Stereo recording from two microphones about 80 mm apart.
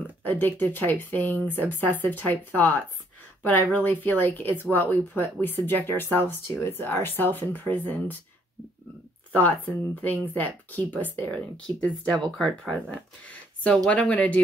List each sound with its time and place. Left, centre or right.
0.2 s speech: left
9.3 s speech: left; by 12.7 s centre
13.2 s speech: centre